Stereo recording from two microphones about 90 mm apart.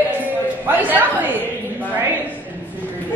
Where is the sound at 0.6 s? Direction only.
20° right (ahead or behind).